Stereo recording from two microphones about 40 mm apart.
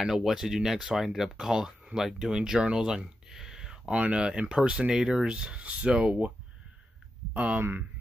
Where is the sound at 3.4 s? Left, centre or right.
Centre.